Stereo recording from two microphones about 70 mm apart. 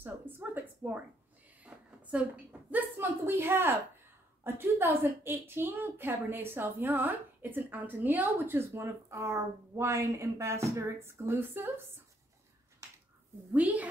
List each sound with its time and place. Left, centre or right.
0.0 s a sound: right
2.7 s a woman's voice: right
8.5 s a woman's voice: right
13.5 s speech: right